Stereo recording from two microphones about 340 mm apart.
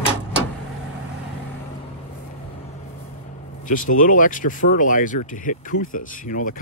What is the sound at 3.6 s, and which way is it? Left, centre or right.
Speech, left.